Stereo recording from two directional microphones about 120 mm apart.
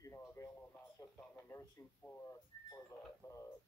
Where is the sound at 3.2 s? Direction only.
25° left (ahead or behind).